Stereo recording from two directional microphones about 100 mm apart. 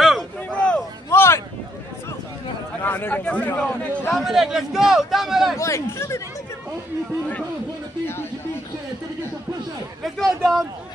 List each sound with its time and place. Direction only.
0.6 s a sound: 10° left (ahead or behind)
1.1 s a sound: 25° left (ahead or behind)
2.8 s a man's voice: 20° left (ahead or behind)
4.1 s a man's voice: 5° right (ahead or behind)
5.6 s speech: 30° left (ahead or behind)
10.0 s a man's voice: centre (ahead or behind)